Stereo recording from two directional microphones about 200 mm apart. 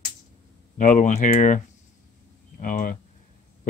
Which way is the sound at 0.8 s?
40° left (ahead or behind).